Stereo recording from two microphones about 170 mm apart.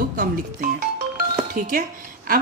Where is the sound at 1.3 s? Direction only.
60° right (ahead or behind).